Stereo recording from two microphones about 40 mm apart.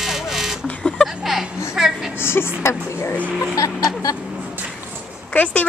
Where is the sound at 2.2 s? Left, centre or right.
Left.